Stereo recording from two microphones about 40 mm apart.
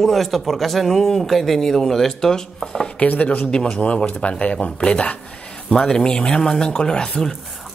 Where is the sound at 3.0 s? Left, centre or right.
Left.